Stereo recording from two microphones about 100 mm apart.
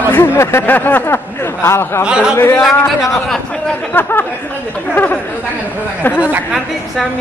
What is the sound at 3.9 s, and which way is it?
Speech, 20° left (ahead or behind).